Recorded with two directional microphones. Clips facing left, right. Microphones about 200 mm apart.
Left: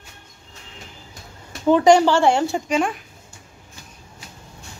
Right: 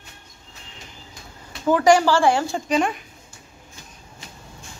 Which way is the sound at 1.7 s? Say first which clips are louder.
Left 2 dB; 20° left (ahead or behind).